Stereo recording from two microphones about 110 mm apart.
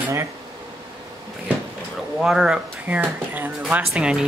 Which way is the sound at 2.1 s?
5° right (ahead or behind).